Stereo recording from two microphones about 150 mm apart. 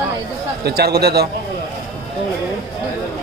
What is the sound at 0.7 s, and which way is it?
Speech, 90° right.